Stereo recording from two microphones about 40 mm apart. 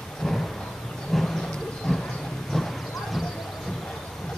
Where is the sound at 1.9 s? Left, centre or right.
Centre.